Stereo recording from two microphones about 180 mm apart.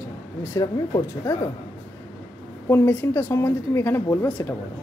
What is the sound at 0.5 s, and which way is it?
Speech, 20° left (ahead or behind).